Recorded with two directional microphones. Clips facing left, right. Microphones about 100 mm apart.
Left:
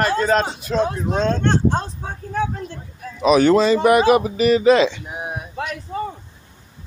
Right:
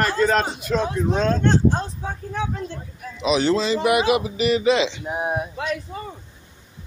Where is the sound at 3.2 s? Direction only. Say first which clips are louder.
Left 6 dB; 50° left (ahead or behind).